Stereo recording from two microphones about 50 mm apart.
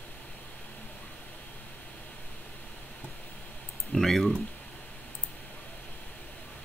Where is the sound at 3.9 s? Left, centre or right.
Centre.